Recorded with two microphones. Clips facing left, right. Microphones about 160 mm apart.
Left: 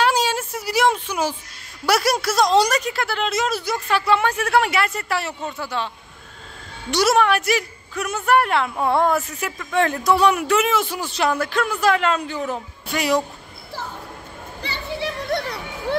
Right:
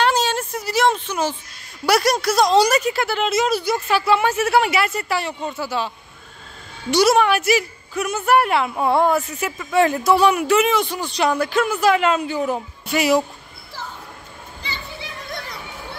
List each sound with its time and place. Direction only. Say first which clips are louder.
0.0 s a sound: right 1 dB; 10° left (ahead or behind)
1.9 s a woman's voice: right 2 dB; 5° left (ahead or behind)
6.9 s a woman's voice: right 2 dB; centre (ahead or behind)
14.6 s children playing: left 7 dB; 70° left (ahead or behind)